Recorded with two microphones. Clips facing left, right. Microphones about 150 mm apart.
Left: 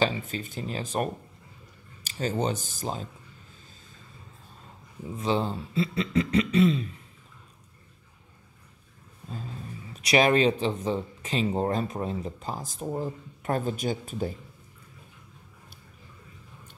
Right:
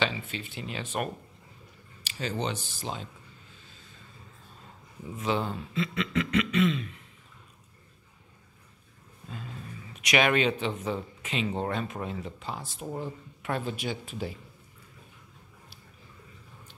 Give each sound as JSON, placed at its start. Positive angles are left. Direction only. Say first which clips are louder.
{"t": 0.0, "sound": "speech", "louder": "left 4 dB", "side_deg": 40}
{"t": 5.1, "sound": "speech", "louder": "left 2 dB", "side_deg": 30}
{"t": 9.9, "sound": "speech", "louder": "left 3 dB", "side_deg": 35}